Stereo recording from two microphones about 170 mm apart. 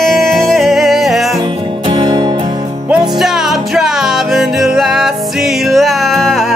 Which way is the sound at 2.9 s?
Centre (ahead or behind).